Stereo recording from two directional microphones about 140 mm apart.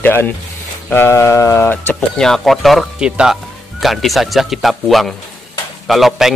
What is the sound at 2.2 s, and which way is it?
Speech, centre (ahead or behind).